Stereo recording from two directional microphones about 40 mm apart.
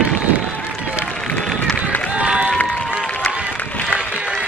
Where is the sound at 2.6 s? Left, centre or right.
Left.